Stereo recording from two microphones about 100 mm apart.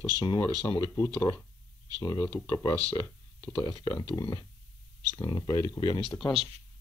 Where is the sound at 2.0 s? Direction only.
45° left (ahead or behind).